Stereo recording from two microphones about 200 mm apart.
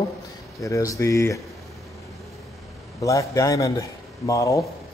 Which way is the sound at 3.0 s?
15° left (ahead or behind).